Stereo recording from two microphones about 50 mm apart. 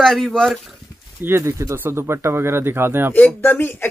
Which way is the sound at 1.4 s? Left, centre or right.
Right.